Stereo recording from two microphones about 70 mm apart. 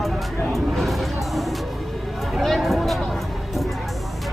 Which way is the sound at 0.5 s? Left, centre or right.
Centre.